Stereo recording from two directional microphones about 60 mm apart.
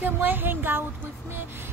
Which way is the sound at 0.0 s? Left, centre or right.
Right.